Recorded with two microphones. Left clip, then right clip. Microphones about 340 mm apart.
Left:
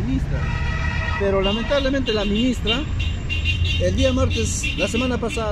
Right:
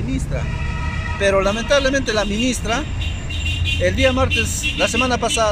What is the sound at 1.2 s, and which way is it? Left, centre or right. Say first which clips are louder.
Speech: right 5 dB; right.